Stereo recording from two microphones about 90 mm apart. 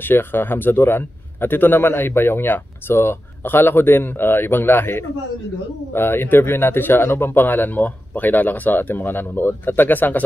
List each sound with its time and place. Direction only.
0.0 s speech: 25° left (ahead or behind)